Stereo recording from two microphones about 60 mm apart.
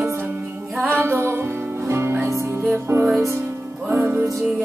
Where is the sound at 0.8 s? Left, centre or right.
Right.